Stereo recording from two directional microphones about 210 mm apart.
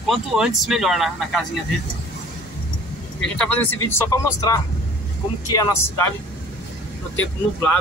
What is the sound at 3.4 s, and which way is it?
Speech, 5° left (ahead or behind).